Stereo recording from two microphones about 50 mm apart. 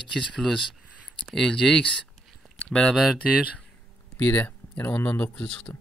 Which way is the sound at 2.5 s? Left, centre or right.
Centre.